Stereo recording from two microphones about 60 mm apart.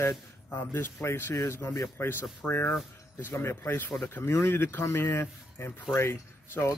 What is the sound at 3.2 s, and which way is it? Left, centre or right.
Speech, left.